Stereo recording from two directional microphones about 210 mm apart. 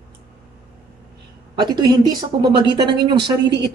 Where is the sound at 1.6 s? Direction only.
20° right (ahead or behind).